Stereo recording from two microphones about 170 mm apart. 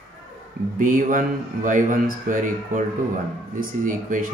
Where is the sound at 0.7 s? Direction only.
50° right (ahead or behind).